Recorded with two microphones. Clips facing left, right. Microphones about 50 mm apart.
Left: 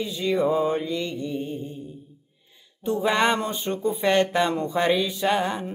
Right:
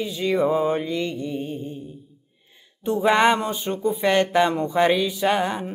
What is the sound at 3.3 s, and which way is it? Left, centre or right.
Speech, centre.